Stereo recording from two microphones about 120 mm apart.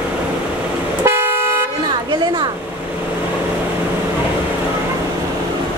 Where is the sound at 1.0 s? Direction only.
20° right (ahead or behind).